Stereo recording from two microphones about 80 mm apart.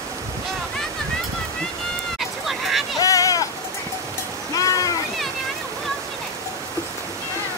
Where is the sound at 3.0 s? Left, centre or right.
Left.